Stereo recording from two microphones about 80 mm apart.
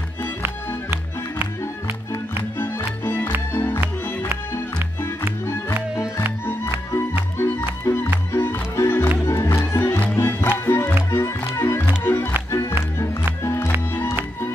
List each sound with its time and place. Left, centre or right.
2.6 s music: left
6.4 s music: left
12.4 s music: left